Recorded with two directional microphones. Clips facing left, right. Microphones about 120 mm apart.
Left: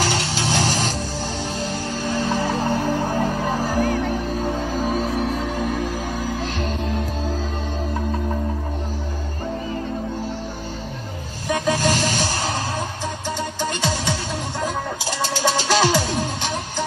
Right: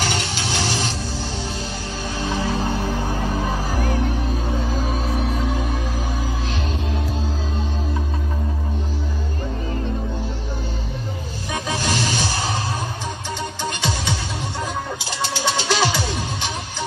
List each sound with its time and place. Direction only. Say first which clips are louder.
0.0 s music: left 2 dB; 35° left (ahead or behind)
2.1 s music: left 1 dB; 40° left (ahead or behind)
11.8 s music: left 2 dB; 40° left (ahead or behind)
14.6 s music: left 2 dB; 45° left (ahead or behind)